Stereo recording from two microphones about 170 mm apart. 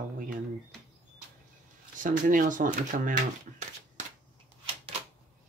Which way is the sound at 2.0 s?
50° right (ahead or behind).